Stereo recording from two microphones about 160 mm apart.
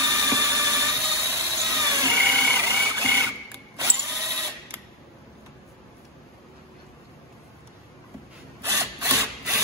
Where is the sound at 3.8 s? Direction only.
15° right (ahead or behind).